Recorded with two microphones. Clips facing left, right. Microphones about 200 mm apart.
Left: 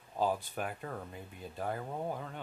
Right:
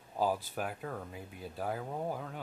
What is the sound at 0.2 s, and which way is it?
Speech, 5° right (ahead or behind).